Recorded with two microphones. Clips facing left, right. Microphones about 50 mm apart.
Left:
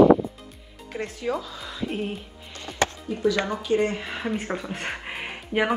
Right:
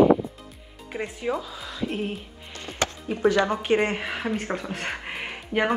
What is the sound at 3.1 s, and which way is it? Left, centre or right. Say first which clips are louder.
Speech: right 1 dB; right.